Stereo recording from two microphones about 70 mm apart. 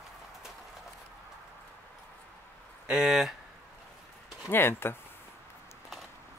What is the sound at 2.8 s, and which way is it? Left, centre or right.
Speech, centre.